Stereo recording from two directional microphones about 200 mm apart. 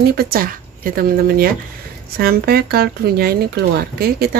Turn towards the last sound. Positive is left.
turn(degrees=-50)  # may be behind; listen again after turning